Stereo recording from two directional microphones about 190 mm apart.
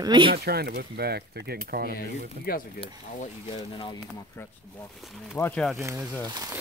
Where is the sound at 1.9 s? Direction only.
50° left (ahead or behind).